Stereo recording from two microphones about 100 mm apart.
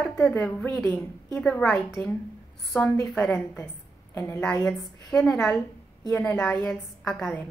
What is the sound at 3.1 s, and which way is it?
Speech, 10° left (ahead or behind).